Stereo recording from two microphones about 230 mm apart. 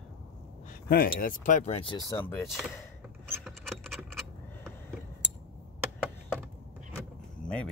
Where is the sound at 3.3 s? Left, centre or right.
Centre.